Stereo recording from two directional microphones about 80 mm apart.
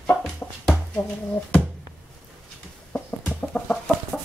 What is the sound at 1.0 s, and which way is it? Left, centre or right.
Speech, left.